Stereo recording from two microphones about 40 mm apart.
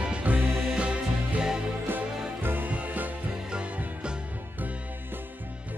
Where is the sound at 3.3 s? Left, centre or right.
Right.